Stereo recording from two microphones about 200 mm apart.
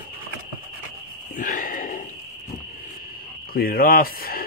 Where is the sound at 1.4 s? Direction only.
40° left (ahead or behind).